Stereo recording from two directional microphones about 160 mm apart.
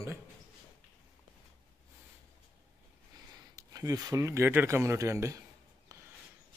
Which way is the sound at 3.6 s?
20° right (ahead or behind).